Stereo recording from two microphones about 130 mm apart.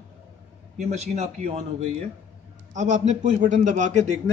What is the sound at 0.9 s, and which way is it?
A man's voice, 60° right (ahead or behind).